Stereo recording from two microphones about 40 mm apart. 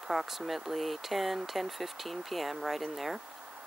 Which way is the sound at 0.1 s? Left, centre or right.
Centre.